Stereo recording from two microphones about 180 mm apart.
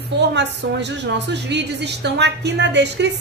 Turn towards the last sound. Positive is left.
turn(degrees=-75)  # may be behind; listen again after turning